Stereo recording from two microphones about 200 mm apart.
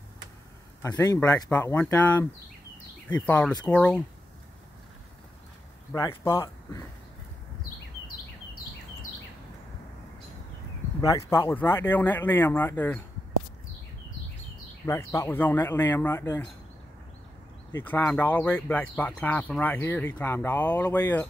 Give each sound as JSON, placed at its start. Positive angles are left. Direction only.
{"t": 0.8, "sound": "speech", "side_deg": 15}
{"t": 5.9, "sound": "speech", "side_deg": 20}
{"t": 11.0, "sound": "speech", "side_deg": 20}
{"t": 14.9, "sound": "speech", "side_deg": 15}
{"t": 17.7, "sound": "speech", "side_deg": 10}